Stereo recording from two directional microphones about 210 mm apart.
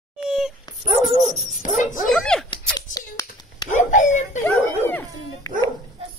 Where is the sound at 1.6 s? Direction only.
40° left (ahead or behind).